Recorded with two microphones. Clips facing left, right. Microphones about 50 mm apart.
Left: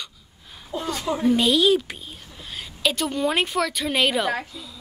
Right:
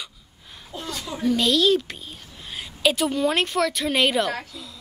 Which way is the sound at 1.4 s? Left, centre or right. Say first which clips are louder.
Right 2 dB; centre.